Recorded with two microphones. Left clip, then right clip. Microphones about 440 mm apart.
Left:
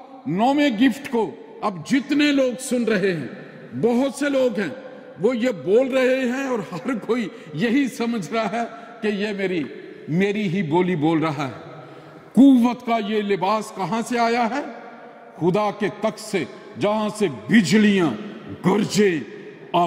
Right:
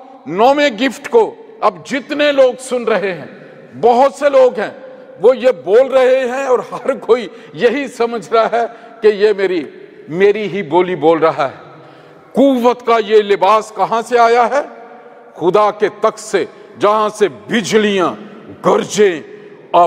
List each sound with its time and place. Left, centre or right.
0.3 s a man's voice: right
1.2 s a man's voice: right
10.2 s a man's voice: right
10.8 s a man's voice: right
12.4 s a man's voice: right
13.6 s a man's voice: right
15.4 s a man's voice: right